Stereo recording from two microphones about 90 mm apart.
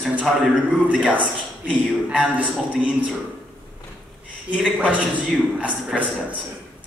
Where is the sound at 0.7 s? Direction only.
15° right (ahead or behind).